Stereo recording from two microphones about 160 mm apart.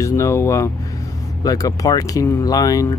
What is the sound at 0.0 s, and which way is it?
Speech, 20° left (ahead or behind).